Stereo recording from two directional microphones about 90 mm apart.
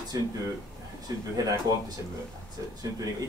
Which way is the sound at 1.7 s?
40° right (ahead or behind).